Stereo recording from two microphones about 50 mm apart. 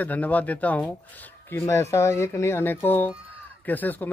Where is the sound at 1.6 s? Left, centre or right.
Left.